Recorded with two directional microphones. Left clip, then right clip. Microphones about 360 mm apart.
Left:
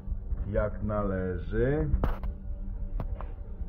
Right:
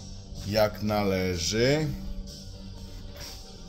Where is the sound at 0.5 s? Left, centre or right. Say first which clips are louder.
Right 6 dB; centre.